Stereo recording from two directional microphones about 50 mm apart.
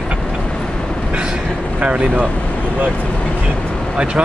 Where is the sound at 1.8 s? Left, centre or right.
Right.